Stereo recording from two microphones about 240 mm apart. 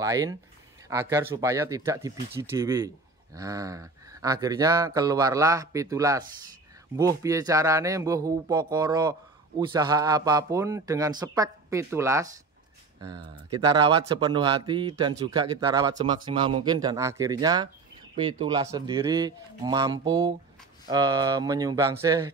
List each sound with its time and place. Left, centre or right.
0.0 s speech: centre